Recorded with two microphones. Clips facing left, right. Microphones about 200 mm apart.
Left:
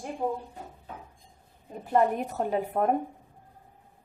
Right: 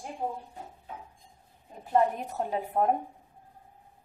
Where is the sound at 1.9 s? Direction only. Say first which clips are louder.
Left 1 dB; 60° left (ahead or behind).